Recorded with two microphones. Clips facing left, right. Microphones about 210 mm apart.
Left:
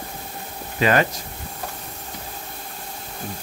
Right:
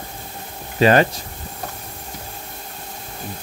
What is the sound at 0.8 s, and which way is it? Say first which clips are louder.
Speech: right 5 dB; 30° right (ahead or behind).